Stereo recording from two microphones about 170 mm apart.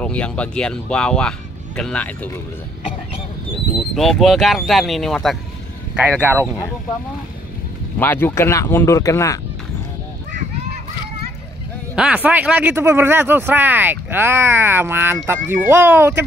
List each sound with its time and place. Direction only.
0.0 s speech: 5° left (ahead or behind)
3.9 s speech: centre (ahead or behind)
8.0 s speech: 10° left (ahead or behind)
11.9 s a man's voice: 5° right (ahead or behind)